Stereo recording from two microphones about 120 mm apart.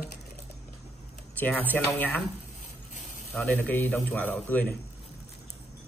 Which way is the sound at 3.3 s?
15° left (ahead or behind).